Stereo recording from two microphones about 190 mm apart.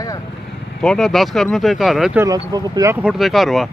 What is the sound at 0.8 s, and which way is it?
Speech, centre (ahead or behind).